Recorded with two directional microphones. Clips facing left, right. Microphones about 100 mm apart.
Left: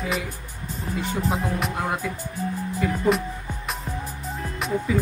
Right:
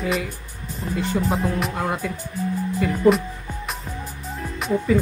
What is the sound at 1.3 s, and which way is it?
Speech, centre (ahead or behind).